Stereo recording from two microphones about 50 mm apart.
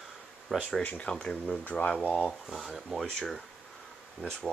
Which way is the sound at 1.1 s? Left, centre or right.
Centre.